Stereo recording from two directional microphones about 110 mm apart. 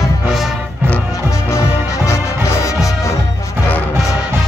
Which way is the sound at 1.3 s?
30° left (ahead or behind).